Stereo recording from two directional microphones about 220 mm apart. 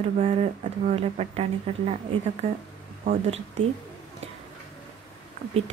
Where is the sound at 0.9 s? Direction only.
25° right (ahead or behind).